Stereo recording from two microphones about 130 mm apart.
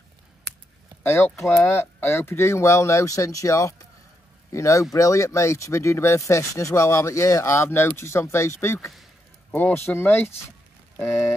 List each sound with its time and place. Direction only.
1.0 s speech: 20° left (ahead or behind)